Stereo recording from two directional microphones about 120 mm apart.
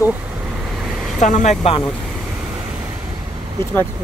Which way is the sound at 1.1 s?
90° left.